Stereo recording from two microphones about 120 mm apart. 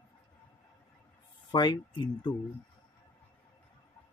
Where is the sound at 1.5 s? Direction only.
40° left (ahead or behind).